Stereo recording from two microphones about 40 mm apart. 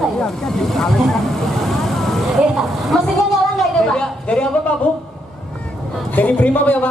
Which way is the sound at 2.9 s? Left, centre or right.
Centre.